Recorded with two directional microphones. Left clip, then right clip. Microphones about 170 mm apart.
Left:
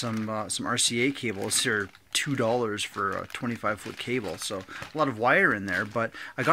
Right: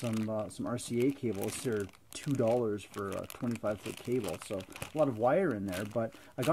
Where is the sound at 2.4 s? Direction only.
25° left (ahead or behind).